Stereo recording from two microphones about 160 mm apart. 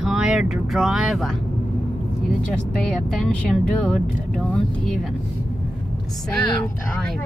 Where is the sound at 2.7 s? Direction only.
5° left (ahead or behind).